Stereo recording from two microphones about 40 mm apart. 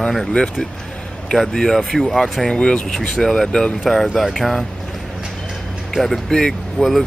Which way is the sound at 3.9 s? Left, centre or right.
Centre.